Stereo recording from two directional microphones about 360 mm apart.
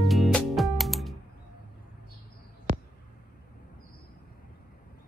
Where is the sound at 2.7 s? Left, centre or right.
Right.